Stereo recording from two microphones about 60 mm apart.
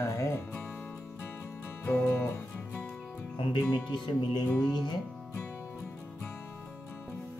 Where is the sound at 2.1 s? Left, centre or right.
Left.